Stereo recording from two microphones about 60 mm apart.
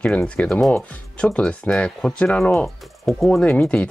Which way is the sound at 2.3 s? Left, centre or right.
Centre.